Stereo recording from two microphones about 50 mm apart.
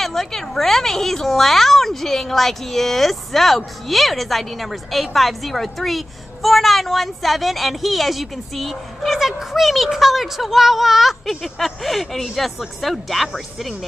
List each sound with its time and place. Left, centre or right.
0.0 s a woman's voice: centre